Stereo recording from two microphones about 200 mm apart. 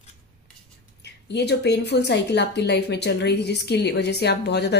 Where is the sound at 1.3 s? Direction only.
55° left (ahead or behind).